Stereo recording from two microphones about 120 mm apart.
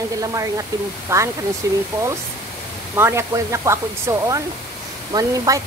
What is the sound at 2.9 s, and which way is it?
A woman's voice, 20° right (ahead or behind).